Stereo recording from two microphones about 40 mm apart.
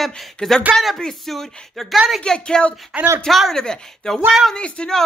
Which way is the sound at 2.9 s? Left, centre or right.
Right.